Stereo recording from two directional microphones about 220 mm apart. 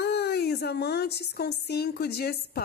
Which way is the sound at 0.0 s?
50° left (ahead or behind).